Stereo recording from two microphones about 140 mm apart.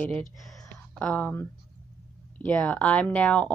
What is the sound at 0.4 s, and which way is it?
Speech, centre (ahead or behind).